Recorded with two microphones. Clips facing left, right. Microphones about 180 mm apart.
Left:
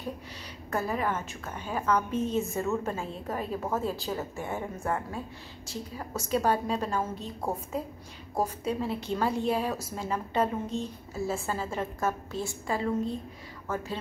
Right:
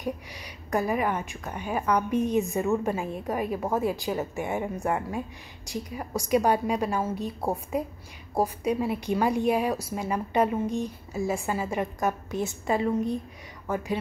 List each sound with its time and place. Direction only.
0.7 s a woman's voice: 15° right (ahead or behind)